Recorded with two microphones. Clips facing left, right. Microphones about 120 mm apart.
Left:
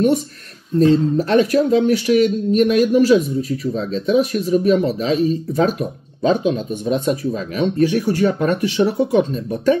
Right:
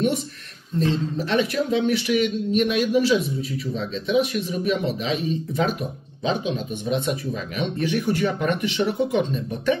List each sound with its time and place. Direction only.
0.7 s speech: 45° left (ahead or behind)